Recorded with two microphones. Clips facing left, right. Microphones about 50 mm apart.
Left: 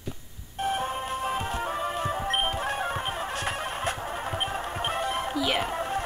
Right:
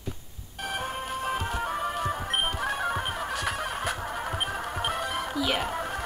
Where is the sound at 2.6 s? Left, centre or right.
Left.